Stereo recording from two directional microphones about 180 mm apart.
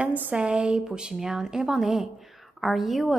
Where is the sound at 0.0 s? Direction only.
10° right (ahead or behind).